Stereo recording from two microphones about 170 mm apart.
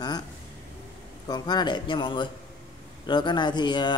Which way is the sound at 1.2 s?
25° left (ahead or behind).